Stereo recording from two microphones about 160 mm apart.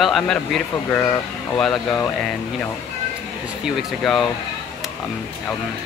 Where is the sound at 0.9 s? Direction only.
20° left (ahead or behind).